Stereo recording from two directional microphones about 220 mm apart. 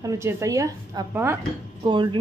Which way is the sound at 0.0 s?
15° right (ahead or behind).